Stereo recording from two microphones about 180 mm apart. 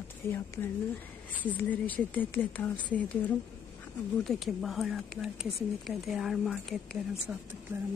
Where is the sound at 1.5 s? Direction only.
10° left (ahead or behind).